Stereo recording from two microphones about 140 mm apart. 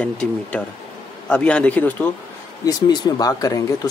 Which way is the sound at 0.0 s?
10° left (ahead or behind).